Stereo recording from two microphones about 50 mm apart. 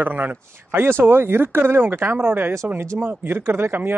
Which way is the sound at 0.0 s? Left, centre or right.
Right.